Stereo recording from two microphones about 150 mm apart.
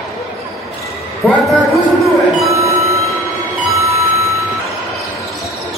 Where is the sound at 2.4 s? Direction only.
20° right (ahead or behind).